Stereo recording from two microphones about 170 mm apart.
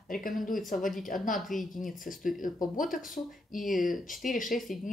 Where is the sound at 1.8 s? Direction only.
50° left (ahead or behind).